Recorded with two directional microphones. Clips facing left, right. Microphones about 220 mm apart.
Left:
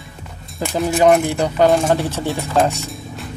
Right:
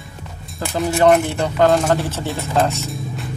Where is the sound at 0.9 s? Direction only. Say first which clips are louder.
Even; 10° left (ahead or behind).